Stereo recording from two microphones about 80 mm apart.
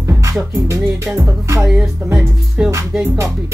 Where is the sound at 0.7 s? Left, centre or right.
Right.